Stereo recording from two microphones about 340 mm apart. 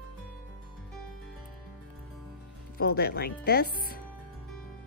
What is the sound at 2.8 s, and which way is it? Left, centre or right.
Speech, left.